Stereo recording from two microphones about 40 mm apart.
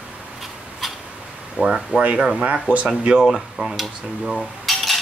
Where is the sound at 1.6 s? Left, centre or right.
Right.